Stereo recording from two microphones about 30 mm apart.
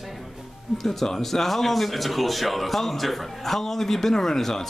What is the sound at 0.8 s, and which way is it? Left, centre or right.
Speech, centre.